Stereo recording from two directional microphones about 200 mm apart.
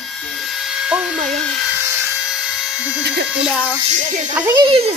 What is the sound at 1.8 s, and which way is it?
Electric toothbrush, 10° right (ahead or behind).